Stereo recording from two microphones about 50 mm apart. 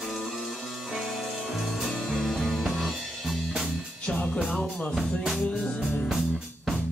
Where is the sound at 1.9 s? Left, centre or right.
Centre.